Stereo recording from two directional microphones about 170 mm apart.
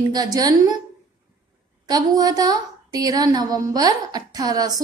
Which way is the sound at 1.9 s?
20° right (ahead or behind).